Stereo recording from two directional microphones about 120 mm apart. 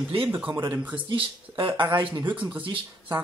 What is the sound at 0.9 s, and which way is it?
Speech, 45° right (ahead or behind).